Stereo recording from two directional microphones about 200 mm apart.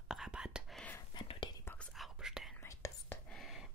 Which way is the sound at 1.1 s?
25° left (ahead or behind).